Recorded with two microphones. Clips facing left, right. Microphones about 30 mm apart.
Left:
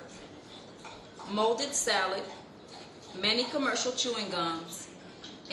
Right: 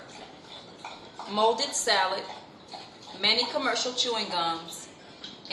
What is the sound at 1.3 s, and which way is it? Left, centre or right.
Speech, right.